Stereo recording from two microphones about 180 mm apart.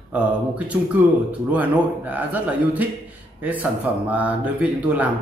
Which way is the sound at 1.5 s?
10° right (ahead or behind).